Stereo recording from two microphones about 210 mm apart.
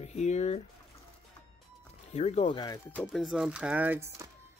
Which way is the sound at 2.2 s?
30° left (ahead or behind).